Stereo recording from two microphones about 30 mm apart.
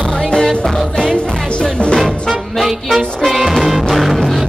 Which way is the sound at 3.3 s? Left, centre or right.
Centre.